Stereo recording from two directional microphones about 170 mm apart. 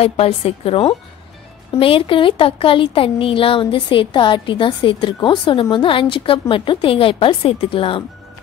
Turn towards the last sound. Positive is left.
turn(degrees=30)  # may be behind; listen again after turning